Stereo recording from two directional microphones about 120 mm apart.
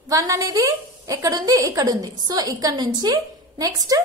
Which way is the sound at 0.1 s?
30° right (ahead or behind).